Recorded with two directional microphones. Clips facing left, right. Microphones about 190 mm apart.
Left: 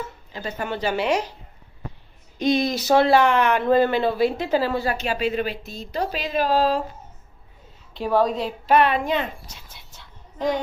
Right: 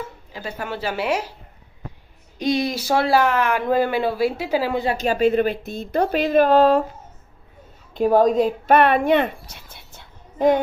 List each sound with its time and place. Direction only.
0.3 s speech: 10° right (ahead or behind)
2.5 s speech: 10° right (ahead or behind)
4.9 s speech: 45° right (ahead or behind)
7.9 s speech: 45° right (ahead or behind)